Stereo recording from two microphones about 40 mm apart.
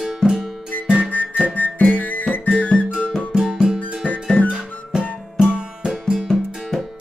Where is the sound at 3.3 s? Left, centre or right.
Centre.